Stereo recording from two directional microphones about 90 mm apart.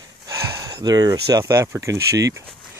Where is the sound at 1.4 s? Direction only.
30° right (ahead or behind).